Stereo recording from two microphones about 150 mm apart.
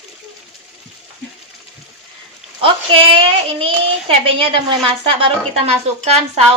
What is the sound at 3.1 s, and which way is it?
A child's voice, 40° right (ahead or behind).